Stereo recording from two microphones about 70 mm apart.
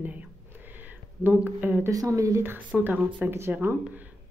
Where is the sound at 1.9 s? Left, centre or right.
Right.